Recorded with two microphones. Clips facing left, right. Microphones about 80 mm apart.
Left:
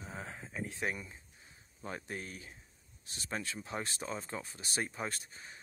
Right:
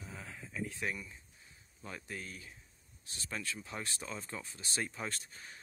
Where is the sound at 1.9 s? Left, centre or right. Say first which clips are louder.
Left 3 dB; left.